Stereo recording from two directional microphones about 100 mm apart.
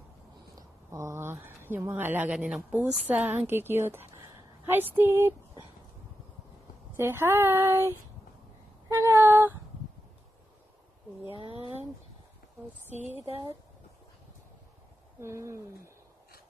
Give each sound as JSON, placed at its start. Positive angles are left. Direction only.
{"t": 0.6, "sound": "a sound", "side_deg": -30}
{"t": 2.2, "sound": "a woman's voice", "side_deg": -5}
{"t": 7.0, "sound": "speech", "side_deg": -25}
{"t": 8.9, "sound": "child singing", "side_deg": -25}
{"t": 11.3, "sound": "speech", "side_deg": -65}
{"t": 15.1, "sound": "speech", "side_deg": -30}